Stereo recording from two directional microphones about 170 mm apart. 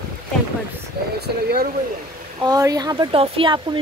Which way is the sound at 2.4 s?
20° right (ahead or behind).